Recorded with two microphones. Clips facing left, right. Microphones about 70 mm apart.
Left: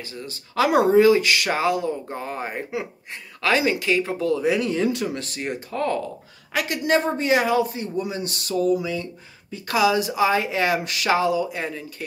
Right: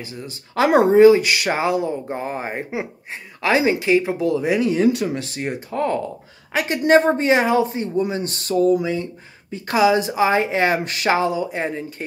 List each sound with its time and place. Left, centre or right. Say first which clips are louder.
0.0 s speech: right 2 dB; centre
6.5 s speech: right 6 dB; right